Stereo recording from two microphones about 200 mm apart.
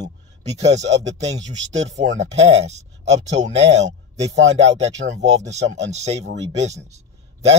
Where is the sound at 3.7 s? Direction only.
35° right (ahead or behind).